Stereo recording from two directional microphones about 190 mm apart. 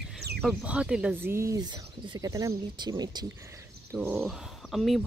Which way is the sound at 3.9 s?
Centre (ahead or behind).